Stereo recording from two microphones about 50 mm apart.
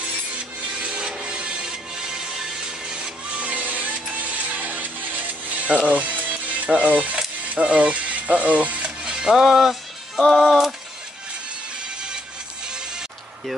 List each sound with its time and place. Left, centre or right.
0.7 s music: centre
3.3 s music: right
7.4 s speech: right
9.0 s music: centre
10.4 s a sound: centre